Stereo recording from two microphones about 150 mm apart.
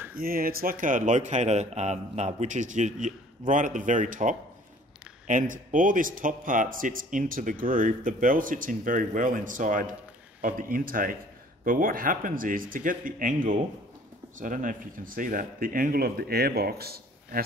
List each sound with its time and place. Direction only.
0.2 s speech: 75° right (ahead or behind)